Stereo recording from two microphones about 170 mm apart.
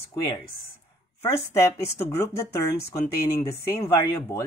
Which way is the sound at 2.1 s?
15° left (ahead or behind).